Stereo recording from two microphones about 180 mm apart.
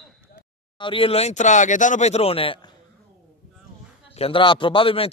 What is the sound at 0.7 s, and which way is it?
Speech, 30° left (ahead or behind).